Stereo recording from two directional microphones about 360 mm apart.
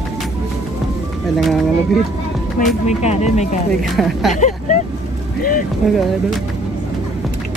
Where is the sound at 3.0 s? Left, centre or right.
Centre.